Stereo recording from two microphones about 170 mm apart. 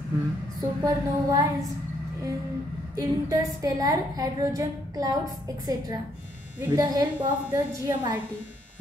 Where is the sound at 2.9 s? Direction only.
20° right (ahead or behind).